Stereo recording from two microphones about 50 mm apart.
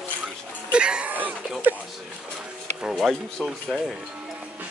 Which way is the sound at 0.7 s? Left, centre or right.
Centre.